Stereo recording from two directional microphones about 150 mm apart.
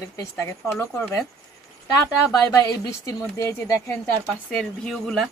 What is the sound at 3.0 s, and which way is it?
Speech, 15° left (ahead or behind).